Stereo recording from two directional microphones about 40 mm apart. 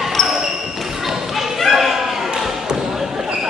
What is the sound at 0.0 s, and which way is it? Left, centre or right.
Basketball bounce, centre.